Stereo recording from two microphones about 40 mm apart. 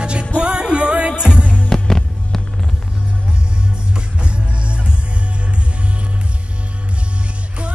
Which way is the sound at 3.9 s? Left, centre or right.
Right.